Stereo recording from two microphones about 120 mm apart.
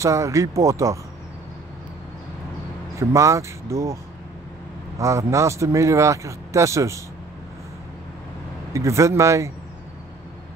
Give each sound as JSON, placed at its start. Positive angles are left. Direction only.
{"t": 0.0, "sound": "a man's voice", "side_deg": -25}
{"t": 3.0, "sound": "a man's voice", "side_deg": -25}
{"t": 8.7, "sound": "a man's voice", "side_deg": -25}